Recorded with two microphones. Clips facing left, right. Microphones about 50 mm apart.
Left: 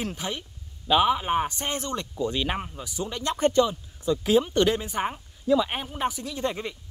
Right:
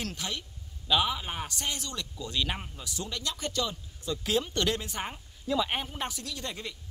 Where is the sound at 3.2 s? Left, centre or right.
Left.